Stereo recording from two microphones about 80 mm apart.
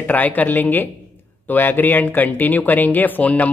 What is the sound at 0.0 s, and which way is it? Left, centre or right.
Speech, left.